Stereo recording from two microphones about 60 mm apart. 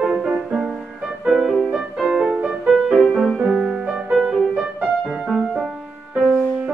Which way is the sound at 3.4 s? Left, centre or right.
Centre.